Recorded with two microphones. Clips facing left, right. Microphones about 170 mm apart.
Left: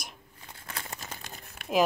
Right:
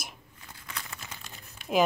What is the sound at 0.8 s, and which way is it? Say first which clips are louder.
Crumpling: left 3 dB; 35° left (ahead or behind).